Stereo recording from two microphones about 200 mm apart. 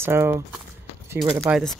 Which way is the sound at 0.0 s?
10° right (ahead or behind).